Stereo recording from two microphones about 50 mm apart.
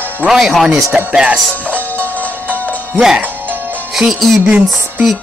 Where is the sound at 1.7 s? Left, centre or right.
Left.